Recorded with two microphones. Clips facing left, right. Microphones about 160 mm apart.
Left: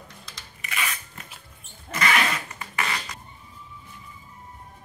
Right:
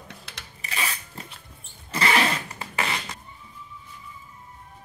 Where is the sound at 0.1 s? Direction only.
65° right (ahead or behind).